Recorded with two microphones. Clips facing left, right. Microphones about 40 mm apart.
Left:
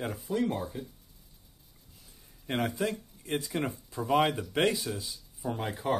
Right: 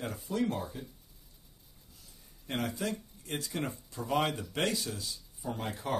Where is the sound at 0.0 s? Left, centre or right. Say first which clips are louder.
Left 2 dB; centre.